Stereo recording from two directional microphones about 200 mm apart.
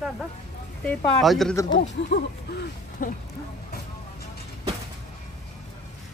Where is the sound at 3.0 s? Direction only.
40° left (ahead or behind).